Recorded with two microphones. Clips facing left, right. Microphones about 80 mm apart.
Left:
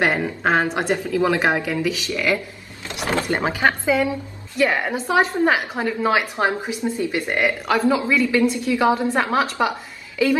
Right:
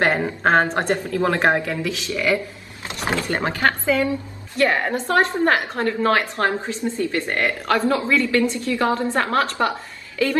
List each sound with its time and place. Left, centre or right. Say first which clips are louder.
0.4 s a woman's voice: right 3 dB; centre
2.1 s speech: right 2 dB; centre
3.3 s a woman's voice: left 1 dB; centre
4.6 s a woman's voice: right 1 dB; centre